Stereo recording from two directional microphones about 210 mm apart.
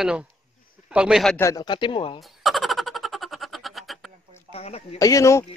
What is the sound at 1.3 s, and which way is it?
Speech, 15° left (ahead or behind).